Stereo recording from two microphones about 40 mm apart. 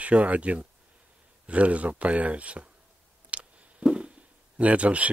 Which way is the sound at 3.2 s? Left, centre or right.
Right.